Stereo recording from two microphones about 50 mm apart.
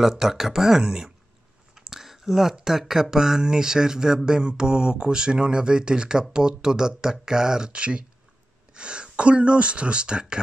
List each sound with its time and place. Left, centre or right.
0.0 s speech: centre